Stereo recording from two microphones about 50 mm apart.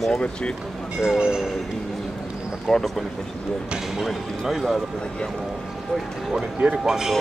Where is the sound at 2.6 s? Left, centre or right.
Centre.